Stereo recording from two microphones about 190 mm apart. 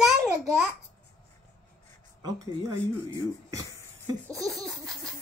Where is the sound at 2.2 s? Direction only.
20° right (ahead or behind).